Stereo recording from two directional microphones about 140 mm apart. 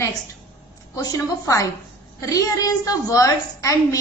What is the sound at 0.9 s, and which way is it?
A woman's voice, 25° left (ahead or behind).